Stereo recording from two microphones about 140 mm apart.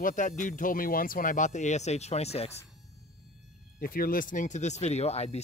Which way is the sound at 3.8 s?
90° left.